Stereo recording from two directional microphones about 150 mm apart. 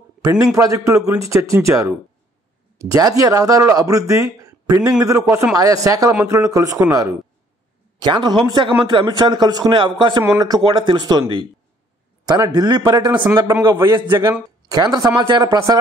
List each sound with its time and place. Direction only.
0.2 s a man's voice: 25° right (ahead or behind)
13.1 s speech: 10° right (ahead or behind)